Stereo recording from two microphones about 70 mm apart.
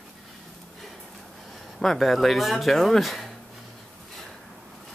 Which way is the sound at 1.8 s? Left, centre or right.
Centre.